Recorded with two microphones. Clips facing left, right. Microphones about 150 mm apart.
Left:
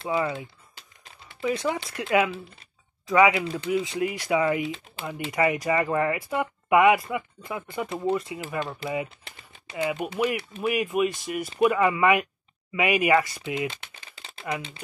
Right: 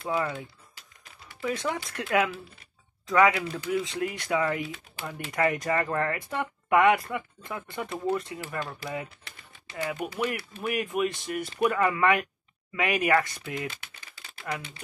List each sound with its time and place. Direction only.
0.1 s speech: 5° left (ahead or behind)
4.6 s speech: 25° left (ahead or behind)
5.3 s speech: 10° left (ahead or behind)
7.9 s speech: 20° left (ahead or behind)
14.2 s crumpling: 30° left (ahead or behind)